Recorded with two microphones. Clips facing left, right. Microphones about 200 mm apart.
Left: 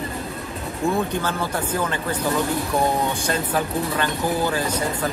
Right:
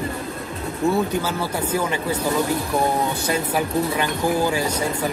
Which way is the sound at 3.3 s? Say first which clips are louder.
Right 1 dB; 10° right (ahead or behind).